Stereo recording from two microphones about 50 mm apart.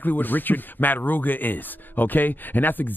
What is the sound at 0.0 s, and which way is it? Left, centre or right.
Speech, left.